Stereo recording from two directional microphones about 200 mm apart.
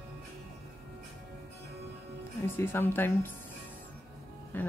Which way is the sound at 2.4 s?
10° left (ahead or behind).